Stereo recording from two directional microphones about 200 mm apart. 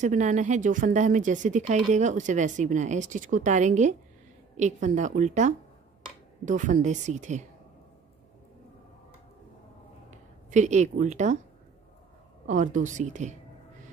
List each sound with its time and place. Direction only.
0.0 s speech: 40° right (ahead or behind)
10.1 s speech: 35° right (ahead or behind)
12.4 s speech: 40° right (ahead or behind)